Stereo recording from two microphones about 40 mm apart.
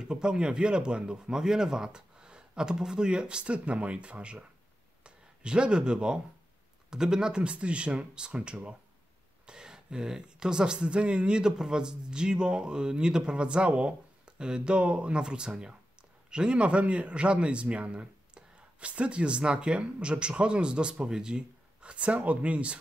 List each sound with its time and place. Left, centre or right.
0.0 s speech: right
9.5 s speech: centre